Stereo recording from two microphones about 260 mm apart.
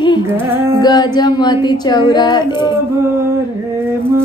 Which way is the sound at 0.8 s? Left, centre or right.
Centre.